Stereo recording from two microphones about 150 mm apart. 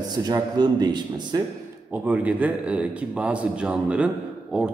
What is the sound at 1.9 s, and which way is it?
A man's voice, 10° right (ahead or behind).